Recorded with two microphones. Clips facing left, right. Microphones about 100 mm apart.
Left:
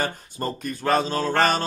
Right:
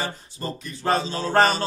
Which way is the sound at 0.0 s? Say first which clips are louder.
Left 3 dB; 50° left (ahead or behind).